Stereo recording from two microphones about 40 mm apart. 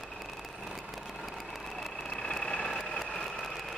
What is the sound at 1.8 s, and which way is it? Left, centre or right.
Vehicle, centre.